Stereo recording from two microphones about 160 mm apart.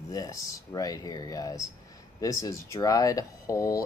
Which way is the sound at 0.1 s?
20° left (ahead or behind).